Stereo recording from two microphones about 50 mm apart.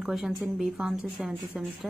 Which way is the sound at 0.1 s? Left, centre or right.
Centre.